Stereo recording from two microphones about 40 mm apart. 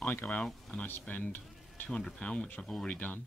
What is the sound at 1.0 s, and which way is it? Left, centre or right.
Speech, left.